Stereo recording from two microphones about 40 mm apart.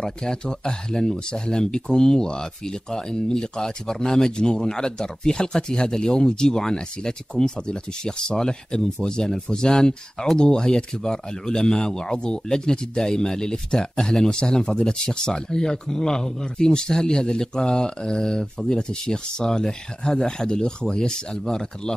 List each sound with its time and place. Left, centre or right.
0.0 s speech: centre